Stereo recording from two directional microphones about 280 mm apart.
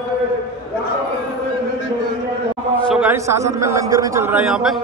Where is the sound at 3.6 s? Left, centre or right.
Centre.